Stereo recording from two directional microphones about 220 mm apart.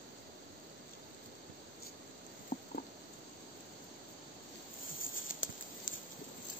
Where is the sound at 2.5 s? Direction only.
40° left (ahead or behind).